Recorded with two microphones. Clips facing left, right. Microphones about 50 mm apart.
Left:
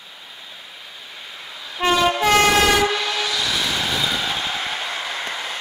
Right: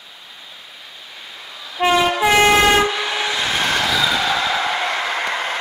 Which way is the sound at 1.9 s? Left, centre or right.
Centre.